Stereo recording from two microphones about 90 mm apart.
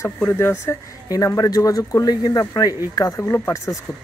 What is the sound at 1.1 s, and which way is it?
Speech, 40° left (ahead or behind).